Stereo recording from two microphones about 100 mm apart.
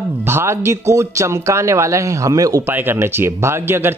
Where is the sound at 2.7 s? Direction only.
20° right (ahead or behind).